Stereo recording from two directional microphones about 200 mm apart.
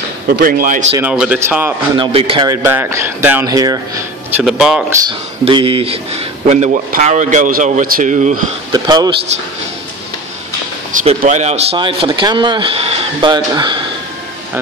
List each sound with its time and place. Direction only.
0.4 s a man's voice: 45° right (ahead or behind)
0.9 s speech: 5° right (ahead or behind)
2.0 s speech: 25° right (ahead or behind)
4.5 s speech: 5° right (ahead or behind)
5.0 s speech: 25° right (ahead or behind)
8.7 s speech: 20° right (ahead or behind)
10.9 s speech: 40° right (ahead or behind); by 13.7 s 20° right (ahead or behind)